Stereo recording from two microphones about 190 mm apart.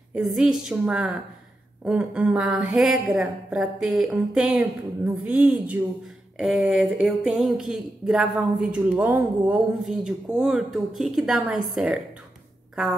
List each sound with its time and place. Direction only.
0.1 s speech: centre (ahead or behind)